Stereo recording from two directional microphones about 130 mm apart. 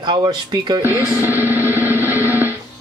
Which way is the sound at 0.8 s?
15° right (ahead or behind).